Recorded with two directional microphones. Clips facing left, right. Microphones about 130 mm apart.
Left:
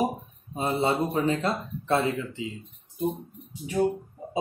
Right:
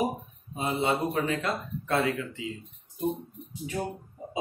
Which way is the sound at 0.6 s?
35° left (ahead or behind).